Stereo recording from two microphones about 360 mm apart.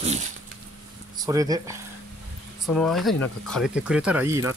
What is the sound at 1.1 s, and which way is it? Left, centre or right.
Speech, centre.